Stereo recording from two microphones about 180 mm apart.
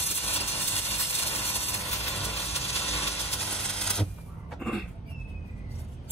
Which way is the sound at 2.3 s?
35° left (ahead or behind).